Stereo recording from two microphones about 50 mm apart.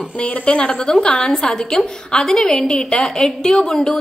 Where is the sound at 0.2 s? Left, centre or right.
Left.